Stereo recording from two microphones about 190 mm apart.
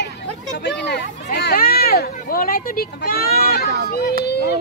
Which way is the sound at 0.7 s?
60° left (ahead or behind).